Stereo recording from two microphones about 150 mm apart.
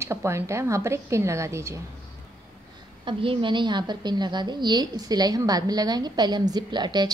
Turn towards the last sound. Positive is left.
turn(degrees=-30)  # may be behind; listen again after turning